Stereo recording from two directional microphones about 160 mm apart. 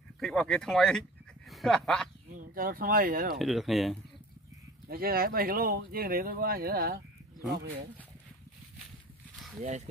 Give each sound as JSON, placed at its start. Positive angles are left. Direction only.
{"t": 0.2, "sound": "speech", "side_deg": 5}
{"t": 2.3, "sound": "speech", "side_deg": -65}
{"t": 3.3, "sound": "speech", "side_deg": 0}
{"t": 4.8, "sound": "speech", "side_deg": -70}
{"t": 9.6, "sound": "speech", "side_deg": -45}